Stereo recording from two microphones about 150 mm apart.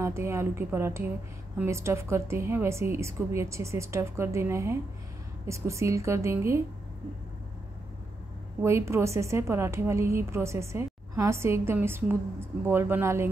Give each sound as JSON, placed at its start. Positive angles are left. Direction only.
{"t": 0.0, "sound": "a woman's voice", "side_deg": -15}
{"t": 8.6, "sound": "a woman's voice", "side_deg": -20}